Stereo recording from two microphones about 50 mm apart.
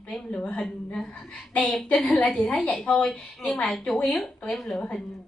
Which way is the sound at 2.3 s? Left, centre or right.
Left.